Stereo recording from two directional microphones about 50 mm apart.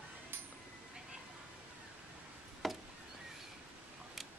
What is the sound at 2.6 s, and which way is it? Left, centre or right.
Chop, centre.